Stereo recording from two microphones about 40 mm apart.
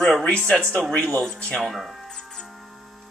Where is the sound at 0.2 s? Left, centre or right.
Left.